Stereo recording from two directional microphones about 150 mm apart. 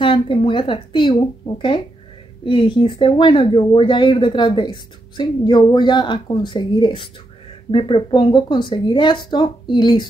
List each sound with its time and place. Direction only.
0.0 s speech: 35° left (ahead or behind)